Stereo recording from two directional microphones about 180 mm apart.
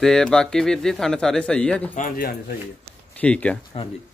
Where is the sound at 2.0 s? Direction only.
50° left (ahead or behind).